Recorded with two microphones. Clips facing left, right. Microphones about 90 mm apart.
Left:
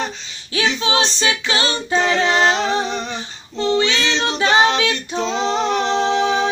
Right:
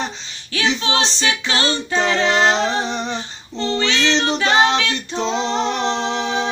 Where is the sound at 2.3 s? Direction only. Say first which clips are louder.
Even; 25° right (ahead or behind).